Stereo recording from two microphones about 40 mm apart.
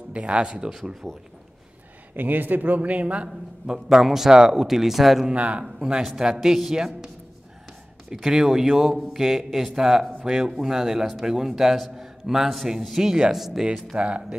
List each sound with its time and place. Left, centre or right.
0.1 s speech: right
0.7 s a man's voice: centre
2.1 s a man's voice: right
3.6 s a man's voice: centre
5.3 s a man's voice: right
5.8 s a man's voice: centre
8.1 s a man's voice: centre
13.9 s speech: right